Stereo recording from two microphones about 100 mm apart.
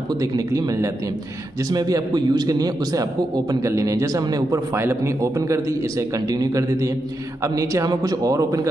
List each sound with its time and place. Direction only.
0.1 s a man's voice: 35° right (ahead or behind)